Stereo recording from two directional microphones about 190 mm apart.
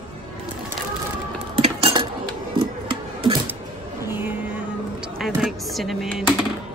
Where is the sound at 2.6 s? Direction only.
25° right (ahead or behind).